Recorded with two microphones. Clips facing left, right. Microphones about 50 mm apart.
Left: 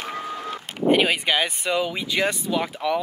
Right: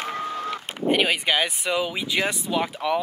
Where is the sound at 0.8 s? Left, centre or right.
Centre.